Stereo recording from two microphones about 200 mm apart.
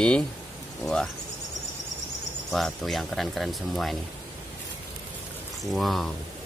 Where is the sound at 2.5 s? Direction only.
Centre (ahead or behind).